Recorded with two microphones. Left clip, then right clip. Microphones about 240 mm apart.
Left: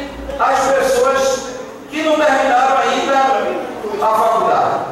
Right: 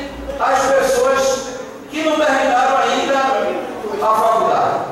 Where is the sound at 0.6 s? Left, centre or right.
Centre.